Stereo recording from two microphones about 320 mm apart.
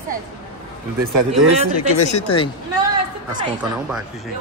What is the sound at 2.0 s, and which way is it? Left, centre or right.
Speech, centre.